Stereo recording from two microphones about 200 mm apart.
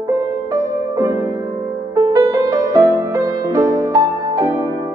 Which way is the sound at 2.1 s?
15° right (ahead or behind).